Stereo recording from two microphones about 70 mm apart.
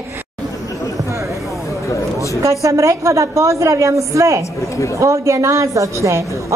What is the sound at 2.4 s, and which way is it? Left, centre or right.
A woman's voice, right.